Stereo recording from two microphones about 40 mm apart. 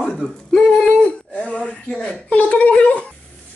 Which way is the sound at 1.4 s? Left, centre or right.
Left.